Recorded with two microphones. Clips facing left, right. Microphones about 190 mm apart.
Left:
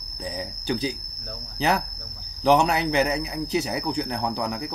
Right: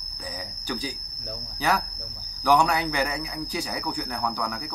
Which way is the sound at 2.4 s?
25° left (ahead or behind).